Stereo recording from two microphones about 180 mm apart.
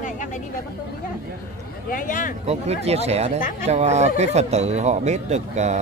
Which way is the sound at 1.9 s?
50° left (ahead or behind).